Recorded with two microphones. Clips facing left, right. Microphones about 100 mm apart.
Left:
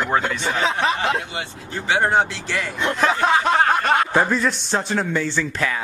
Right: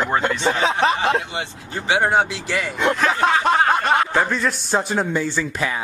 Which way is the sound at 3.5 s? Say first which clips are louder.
Even; centre (ahead or behind).